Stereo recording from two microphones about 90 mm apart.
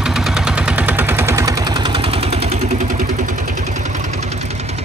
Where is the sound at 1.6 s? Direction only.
60° right (ahead or behind); by 2.3 s 90° right.